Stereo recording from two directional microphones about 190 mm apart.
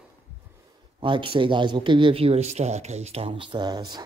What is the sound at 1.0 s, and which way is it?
Speech, 25° right (ahead or behind).